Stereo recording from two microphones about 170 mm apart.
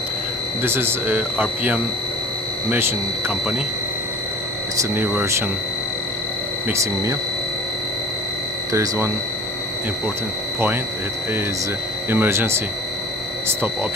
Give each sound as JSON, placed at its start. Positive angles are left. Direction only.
{"t": 0.6, "sound": "speech", "side_deg": -15}
{"t": 4.9, "sound": "speech", "side_deg": -10}
{"t": 6.7, "sound": "speech", "side_deg": -20}
{"t": 8.7, "sound": "speech", "side_deg": -15}
{"t": 12.1, "sound": "speech", "side_deg": -15}